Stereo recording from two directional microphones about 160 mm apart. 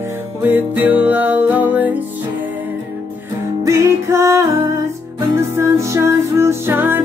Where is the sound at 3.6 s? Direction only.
15° right (ahead or behind).